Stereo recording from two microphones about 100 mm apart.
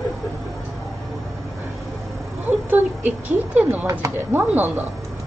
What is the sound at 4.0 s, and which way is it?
Speech, 20° right (ahead or behind).